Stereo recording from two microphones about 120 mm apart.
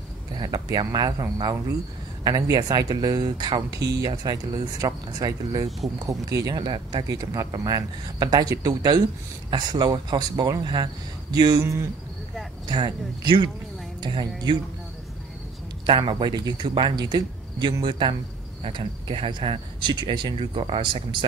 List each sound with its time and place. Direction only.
0.4 s speech: 35° right (ahead or behind)
6.6 s speech: 40° right (ahead or behind); by 11.9 s 25° right (ahead or behind)
12.6 s speech: 40° right (ahead or behind)
15.9 s speech: 45° right (ahead or behind)